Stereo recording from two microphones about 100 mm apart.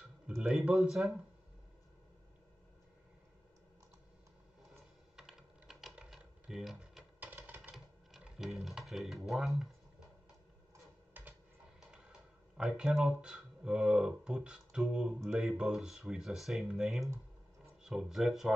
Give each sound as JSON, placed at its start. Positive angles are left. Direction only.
{"t": 0.4, "sound": "speech", "side_deg": -10}
{"t": 5.1, "sound": "typing", "side_deg": -5}
{"t": 7.2, "sound": "music", "side_deg": -15}
{"t": 7.7, "sound": "typing", "side_deg": -5}
{"t": 12.5, "sound": "speech", "side_deg": -5}